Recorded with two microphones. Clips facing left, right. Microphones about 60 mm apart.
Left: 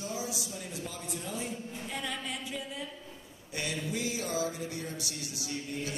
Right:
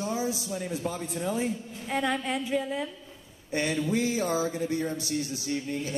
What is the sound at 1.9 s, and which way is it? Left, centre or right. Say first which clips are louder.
A woman's voice: right 11 dB; right.